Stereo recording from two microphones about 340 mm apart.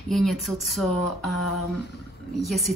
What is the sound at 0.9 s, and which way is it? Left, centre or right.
Speech, left.